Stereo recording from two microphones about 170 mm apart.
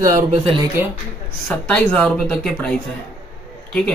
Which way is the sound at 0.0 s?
50° right (ahead or behind).